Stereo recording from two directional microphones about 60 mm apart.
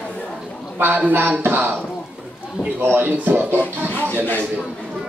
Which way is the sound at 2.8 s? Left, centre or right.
Right.